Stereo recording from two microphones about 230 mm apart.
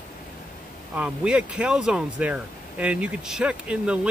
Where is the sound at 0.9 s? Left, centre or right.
Centre.